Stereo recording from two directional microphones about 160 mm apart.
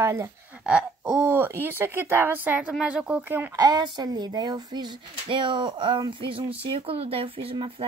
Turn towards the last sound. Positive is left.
turn(degrees=-35)  # may be behind; listen again after turning